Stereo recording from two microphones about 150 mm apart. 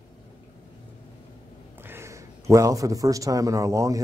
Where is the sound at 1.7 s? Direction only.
15° right (ahead or behind).